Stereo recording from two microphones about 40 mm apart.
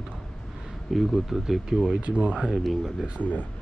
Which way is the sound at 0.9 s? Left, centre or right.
Centre.